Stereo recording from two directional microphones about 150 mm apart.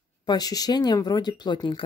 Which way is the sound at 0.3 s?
25° left (ahead or behind).